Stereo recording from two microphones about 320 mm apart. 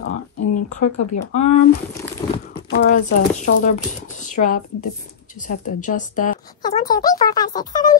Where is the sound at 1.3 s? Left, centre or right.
Left.